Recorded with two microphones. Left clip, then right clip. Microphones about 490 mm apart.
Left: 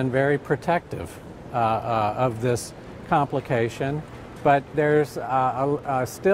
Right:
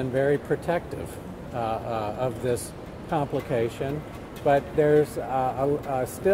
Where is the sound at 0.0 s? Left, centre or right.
Left.